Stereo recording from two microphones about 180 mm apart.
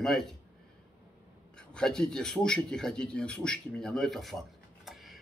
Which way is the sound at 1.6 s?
5° left (ahead or behind).